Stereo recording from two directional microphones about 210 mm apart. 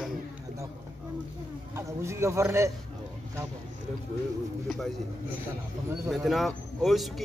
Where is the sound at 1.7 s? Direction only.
15° right (ahead or behind).